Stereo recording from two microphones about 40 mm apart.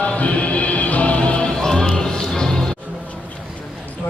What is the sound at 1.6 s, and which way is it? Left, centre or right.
Music, centre.